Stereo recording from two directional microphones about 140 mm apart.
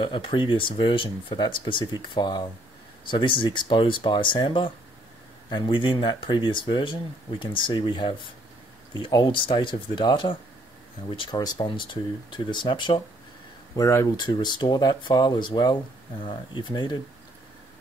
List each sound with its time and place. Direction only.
0.0 s speech: 35° left (ahead or behind)
13.7 s speech: 20° left (ahead or behind)
14.1 s speech: 30° left (ahead or behind)